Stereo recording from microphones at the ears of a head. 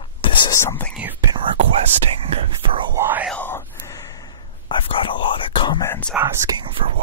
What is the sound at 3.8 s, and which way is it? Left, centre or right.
Whispering, left.